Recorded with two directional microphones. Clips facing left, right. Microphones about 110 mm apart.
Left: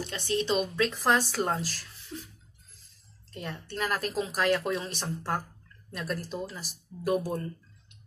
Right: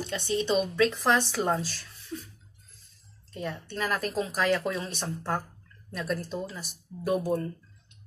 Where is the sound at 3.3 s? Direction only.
Centre (ahead or behind).